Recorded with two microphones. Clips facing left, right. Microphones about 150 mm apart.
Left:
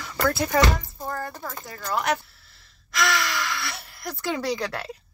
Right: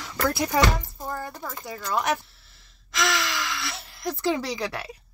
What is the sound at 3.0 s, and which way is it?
Gasp, 15° right (ahead or behind).